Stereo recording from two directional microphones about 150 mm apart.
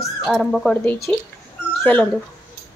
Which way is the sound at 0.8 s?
15° left (ahead or behind).